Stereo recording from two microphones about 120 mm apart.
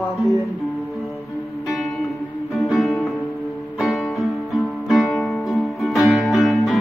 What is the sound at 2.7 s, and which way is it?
Music, centre (ahead or behind).